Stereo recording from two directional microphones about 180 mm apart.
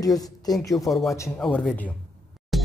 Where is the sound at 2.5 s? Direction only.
Centre (ahead or behind).